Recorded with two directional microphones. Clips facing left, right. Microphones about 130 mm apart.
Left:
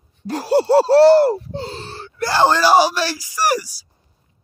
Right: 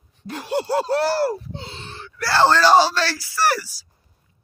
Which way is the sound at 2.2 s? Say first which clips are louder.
Left 1 dB; 15° left (ahead or behind).